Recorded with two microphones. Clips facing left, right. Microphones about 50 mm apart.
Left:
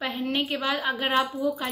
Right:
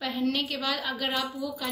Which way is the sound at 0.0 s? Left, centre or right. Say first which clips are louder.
Left 1 dB; left.